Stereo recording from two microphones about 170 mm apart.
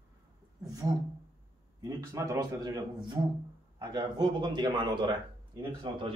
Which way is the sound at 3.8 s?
25° right (ahead or behind).